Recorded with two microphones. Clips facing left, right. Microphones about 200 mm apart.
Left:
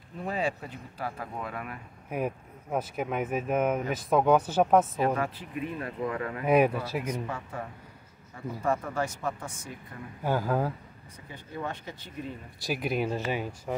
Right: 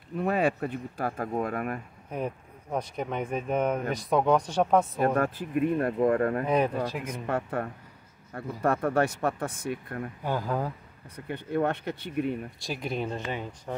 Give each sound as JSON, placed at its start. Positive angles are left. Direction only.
{"t": 0.2, "sound": "speech", "side_deg": -60}
{"t": 2.0, "sound": "speech", "side_deg": 10}
{"t": 5.0, "sound": "speech", "side_deg": -50}
{"t": 6.4, "sound": "speech", "side_deg": 10}
{"t": 7.2, "sound": "speech", "side_deg": -60}
{"t": 10.2, "sound": "speech", "side_deg": 5}
{"t": 11.1, "sound": "speech", "side_deg": -65}
{"t": 12.5, "sound": "speech", "side_deg": 5}